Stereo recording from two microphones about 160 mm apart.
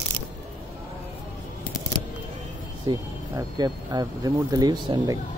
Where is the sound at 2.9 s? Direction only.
25° right (ahead or behind).